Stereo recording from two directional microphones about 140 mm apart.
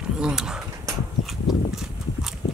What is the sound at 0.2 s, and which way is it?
Speech, 5° right (ahead or behind).